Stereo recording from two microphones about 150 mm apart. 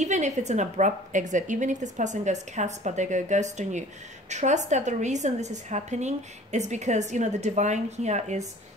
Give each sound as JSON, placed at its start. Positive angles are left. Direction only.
{"t": 0.0, "sound": "a woman's voice", "side_deg": -50}